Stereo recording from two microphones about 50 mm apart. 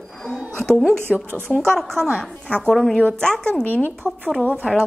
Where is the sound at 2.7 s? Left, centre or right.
Centre.